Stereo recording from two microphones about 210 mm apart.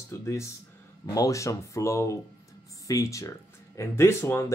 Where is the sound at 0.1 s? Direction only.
15° left (ahead or behind).